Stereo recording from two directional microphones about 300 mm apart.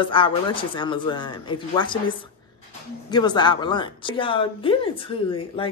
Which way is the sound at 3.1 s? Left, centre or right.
Centre.